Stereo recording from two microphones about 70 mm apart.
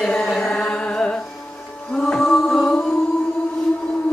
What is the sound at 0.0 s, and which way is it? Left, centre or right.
Music, centre.